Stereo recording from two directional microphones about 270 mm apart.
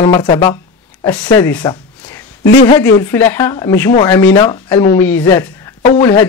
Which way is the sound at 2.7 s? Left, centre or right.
Centre.